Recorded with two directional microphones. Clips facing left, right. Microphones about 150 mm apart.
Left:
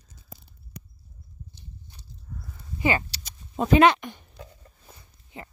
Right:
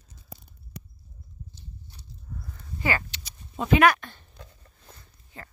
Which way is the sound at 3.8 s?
20° left (ahead or behind).